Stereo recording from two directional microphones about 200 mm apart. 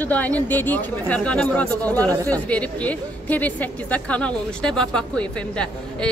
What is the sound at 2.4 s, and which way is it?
A woman's voice, 5° left (ahead or behind).